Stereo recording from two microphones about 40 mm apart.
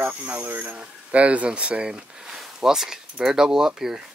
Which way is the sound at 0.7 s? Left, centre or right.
Right.